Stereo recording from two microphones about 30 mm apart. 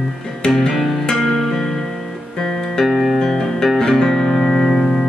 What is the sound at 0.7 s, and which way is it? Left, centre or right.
Music, centre.